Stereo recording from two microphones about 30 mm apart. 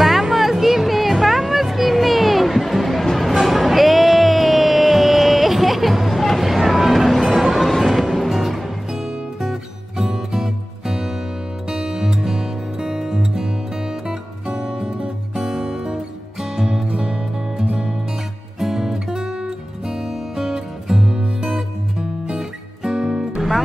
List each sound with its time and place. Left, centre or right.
0.0 s music: centre
14.5 s music: right
18.6 s music: centre
21.0 s music: right
22.8 s music: right